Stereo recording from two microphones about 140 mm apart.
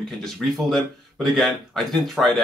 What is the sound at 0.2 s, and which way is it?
Speech, centre (ahead or behind).